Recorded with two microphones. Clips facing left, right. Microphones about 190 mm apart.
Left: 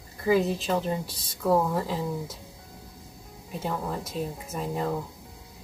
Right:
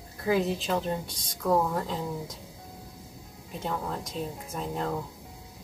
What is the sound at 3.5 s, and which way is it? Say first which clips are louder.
Speech: left 2 dB; 5° left (ahead or behind).